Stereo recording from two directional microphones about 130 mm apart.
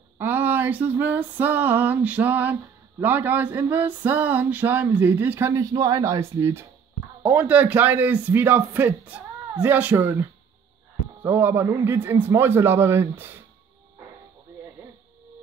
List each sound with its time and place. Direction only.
0.2 s a man's voice: 15° right (ahead or behind)
5.5 s a man's voice: 25° right (ahead or behind)
11.2 s a man's voice: 15° right (ahead or behind)